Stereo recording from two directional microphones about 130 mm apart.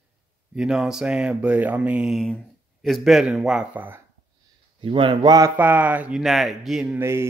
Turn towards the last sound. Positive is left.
turn(degrees=-20)  # may be behind; listen again after turning